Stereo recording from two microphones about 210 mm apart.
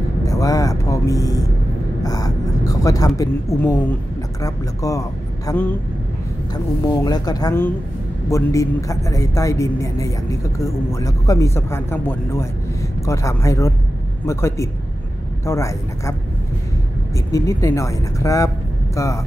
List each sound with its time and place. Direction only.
0.2 s a woman's voice: 15° left (ahead or behind)
17.3 s a woman's voice: 15° left (ahead or behind)